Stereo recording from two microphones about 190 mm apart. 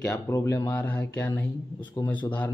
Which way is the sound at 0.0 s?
10° left (ahead or behind).